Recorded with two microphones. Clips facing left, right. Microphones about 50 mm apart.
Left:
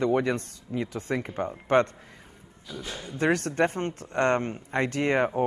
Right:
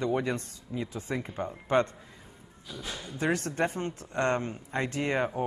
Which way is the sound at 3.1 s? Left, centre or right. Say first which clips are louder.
Left 5 dB; left.